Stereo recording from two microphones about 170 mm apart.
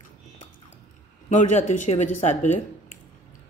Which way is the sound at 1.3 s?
45° left (ahead or behind).